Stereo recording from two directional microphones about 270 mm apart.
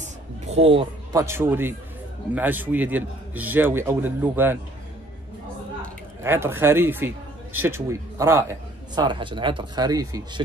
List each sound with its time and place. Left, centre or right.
0.0 s a man's voice: right
6.2 s speech: centre